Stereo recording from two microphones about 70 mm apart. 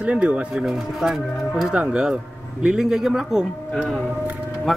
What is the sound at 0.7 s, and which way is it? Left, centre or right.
Speech, centre.